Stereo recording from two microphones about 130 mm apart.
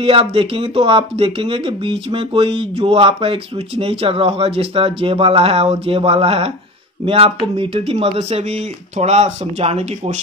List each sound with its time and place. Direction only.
0.0 s speech: 45° right (ahead or behind)